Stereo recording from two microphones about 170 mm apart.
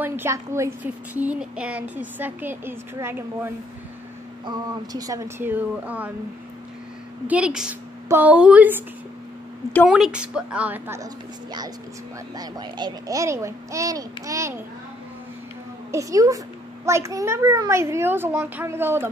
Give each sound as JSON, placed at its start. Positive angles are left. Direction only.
{"t": 0.0, "sound": "speech", "side_deg": -10}
{"t": 7.2, "sound": "speech", "side_deg": -5}
{"t": 9.8, "sound": "speech", "side_deg": -5}
{"t": 12.4, "sound": "a child's voice", "side_deg": -25}
{"t": 15.9, "sound": "a child's voice", "side_deg": -20}